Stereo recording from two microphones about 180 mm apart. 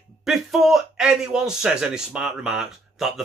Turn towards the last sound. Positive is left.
turn(degrees=0)  # may be behind; listen again after turning